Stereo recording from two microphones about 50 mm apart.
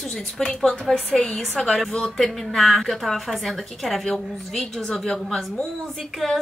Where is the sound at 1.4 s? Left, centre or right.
Centre.